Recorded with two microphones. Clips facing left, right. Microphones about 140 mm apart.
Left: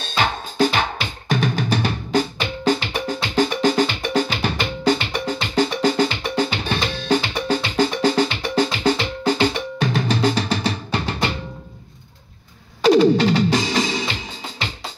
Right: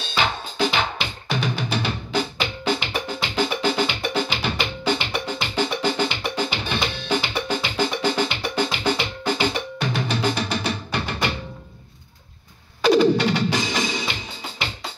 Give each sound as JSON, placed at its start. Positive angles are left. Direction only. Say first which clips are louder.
{"t": 0.1, "sound": "music", "louder": "left 2 dB", "side_deg": 45}
{"t": 12.8, "sound": "music", "louder": "left 3 dB", "side_deg": 35}